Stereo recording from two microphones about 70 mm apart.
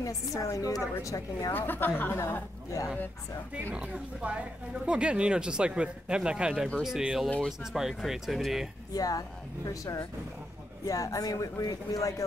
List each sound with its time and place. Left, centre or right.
0.0 s a woman's voice: left
1.5 s a woman's voice: left
2.1 s speech: left
3.7 s speech: centre
8.9 s speech: left
10.9 s speech: left